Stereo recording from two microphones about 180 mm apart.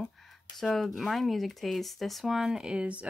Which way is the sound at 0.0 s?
Centre (ahead or behind).